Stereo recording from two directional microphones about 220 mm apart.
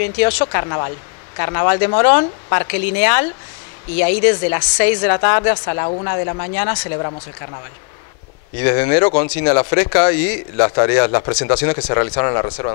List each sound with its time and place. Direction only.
0.0 s a woman's voice: 15° left (ahead or behind)
8.5 s a woman's voice: 20° left (ahead or behind)